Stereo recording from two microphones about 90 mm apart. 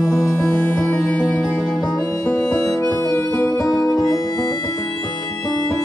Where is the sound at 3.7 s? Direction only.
40° left (ahead or behind).